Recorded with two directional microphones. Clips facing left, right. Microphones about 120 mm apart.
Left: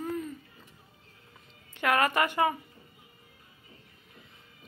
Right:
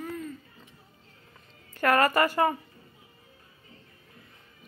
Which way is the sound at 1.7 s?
Centre (ahead or behind).